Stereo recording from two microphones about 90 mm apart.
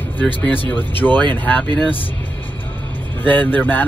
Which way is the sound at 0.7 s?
20° left (ahead or behind).